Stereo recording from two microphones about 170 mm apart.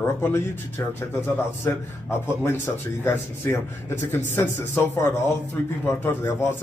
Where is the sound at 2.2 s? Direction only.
15° left (ahead or behind).